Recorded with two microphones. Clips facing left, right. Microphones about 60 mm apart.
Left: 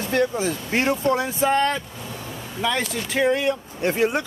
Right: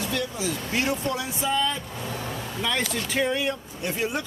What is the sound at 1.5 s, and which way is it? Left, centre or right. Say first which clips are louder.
Speech: left 4 dB; left.